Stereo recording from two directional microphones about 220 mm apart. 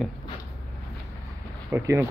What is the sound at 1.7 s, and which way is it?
Speech, 10° right (ahead or behind).